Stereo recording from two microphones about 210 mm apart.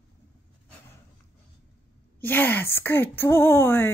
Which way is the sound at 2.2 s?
10° left (ahead or behind).